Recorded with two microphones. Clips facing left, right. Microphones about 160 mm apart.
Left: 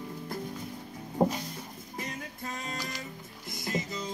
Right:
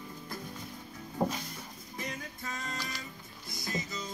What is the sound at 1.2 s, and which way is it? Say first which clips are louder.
Music: left 5 dB; 30° left (ahead or behind).